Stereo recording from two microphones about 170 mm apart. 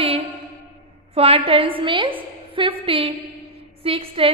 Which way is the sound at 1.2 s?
35° right (ahead or behind).